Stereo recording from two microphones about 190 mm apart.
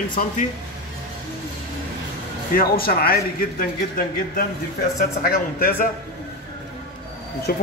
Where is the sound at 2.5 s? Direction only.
50° left (ahead or behind).